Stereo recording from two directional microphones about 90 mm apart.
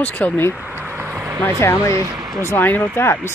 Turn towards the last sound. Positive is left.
turn(degrees=25)  # may be behind; listen again after turning